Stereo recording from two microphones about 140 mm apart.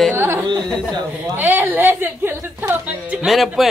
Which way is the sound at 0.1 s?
15° right (ahead or behind).